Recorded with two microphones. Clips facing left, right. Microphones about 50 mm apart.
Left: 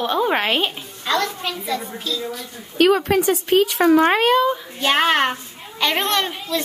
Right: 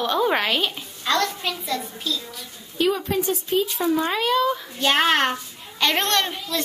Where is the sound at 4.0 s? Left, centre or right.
Left.